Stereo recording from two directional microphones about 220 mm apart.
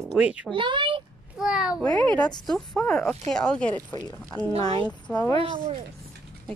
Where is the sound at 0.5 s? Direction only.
20° right (ahead or behind).